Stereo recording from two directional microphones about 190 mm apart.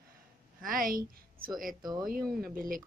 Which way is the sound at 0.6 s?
45° right (ahead or behind).